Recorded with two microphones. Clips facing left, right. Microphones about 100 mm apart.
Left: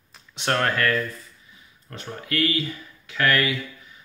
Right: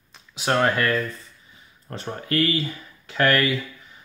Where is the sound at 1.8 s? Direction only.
35° right (ahead or behind).